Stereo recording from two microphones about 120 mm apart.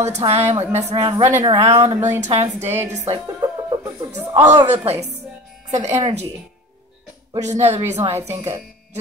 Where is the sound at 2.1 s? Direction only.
70° right (ahead or behind).